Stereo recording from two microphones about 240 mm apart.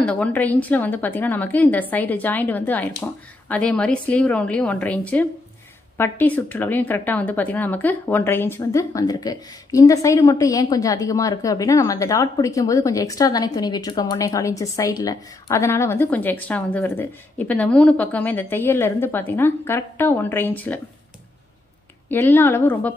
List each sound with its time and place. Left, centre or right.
0.0 s a woman's voice: centre
22.1 s speech: centre